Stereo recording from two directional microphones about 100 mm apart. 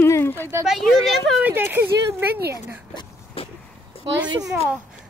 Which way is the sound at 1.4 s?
20° right (ahead or behind).